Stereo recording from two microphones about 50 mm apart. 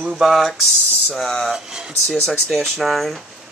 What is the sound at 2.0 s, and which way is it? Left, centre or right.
Speech, centre.